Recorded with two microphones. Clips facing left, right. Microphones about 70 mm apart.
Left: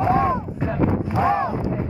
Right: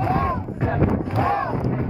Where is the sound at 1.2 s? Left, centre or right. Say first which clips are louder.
Left 2 dB; centre.